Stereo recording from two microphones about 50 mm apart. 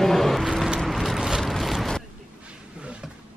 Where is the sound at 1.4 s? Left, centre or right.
Centre.